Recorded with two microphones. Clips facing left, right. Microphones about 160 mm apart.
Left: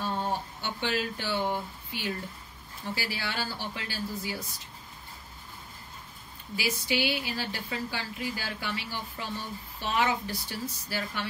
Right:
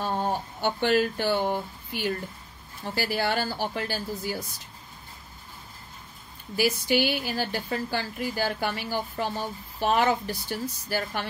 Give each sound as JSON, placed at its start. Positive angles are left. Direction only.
{"t": 0.6, "sound": "speech", "side_deg": -45}
{"t": 6.5, "sound": "speech", "side_deg": -45}